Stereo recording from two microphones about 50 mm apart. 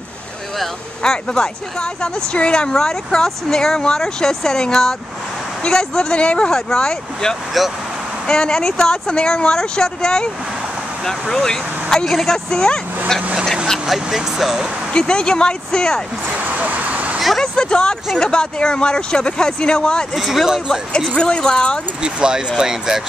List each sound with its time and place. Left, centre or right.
1.0 s speech: centre
6.5 s speech: centre
7.6 s speech: centre
8.3 s speech: centre
13.2 s speech: right
13.8 s speech: centre
14.9 s speech: centre
16.3 s vehicle: right
17.4 s a sound: centre
18.1 s speech: centre
20.2 s speech: centre
21.1 s speech: centre
22.0 s speech: centre